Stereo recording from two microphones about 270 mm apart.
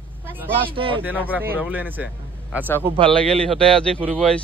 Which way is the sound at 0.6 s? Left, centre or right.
Centre.